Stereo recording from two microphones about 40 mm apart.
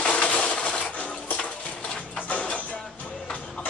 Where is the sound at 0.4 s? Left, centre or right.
Left.